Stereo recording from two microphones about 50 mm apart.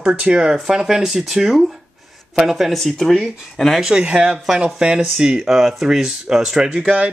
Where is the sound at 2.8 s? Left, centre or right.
Centre.